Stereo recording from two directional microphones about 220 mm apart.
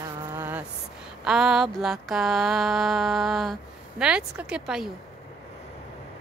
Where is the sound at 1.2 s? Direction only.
5° right (ahead or behind).